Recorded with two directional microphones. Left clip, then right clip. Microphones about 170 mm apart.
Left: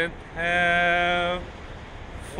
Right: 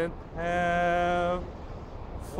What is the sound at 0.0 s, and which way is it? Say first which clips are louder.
Speech: left 5 dB; 5° right (ahead or behind).